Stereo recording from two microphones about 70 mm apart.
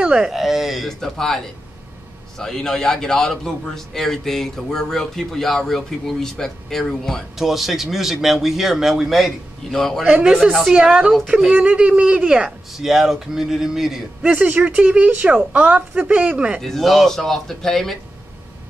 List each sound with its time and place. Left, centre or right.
0.0 s speech: centre
0.4 s a man's voice: centre
10.2 s a woman's voice: centre
12.4 s a man's voice: centre
14.3 s a woman's voice: right
16.6 s a man's voice: centre